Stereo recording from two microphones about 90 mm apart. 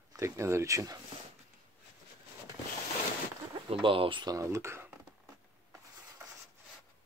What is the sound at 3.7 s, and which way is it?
Speech, 80° right.